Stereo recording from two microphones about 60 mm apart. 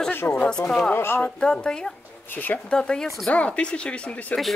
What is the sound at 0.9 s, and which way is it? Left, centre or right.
Speech, left.